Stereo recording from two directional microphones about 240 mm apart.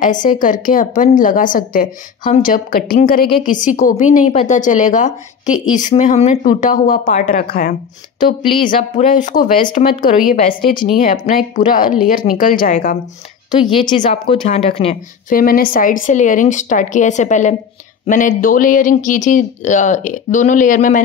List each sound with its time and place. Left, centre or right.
0.0 s a woman's voice: left
10.3 s a woman's voice: left
11.0 s a woman's voice: left
13.8 s a woman's voice: left
15.3 s a woman's voice: left